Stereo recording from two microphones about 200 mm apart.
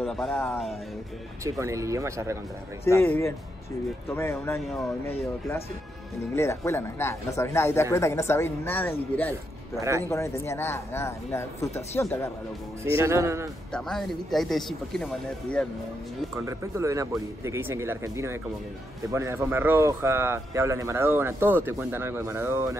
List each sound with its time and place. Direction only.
0.0 s speech: 5° left (ahead or behind)
1.4 s a man's voice: 15° right (ahead or behind)
2.8 s speech: 15° left (ahead or behind)
4.1 s speech: 15° left (ahead or behind)
4.6 s speech: centre (ahead or behind)
6.3 s speech: 15° left (ahead or behind)
9.8 s a man's voice: 15° right (ahead or behind)
10.0 s speech: 15° left (ahead or behind)
12.9 s a man's voice: 15° right (ahead or behind)
13.7 s speech: centre (ahead or behind)
16.3 s a man's voice: 15° right (ahead or behind)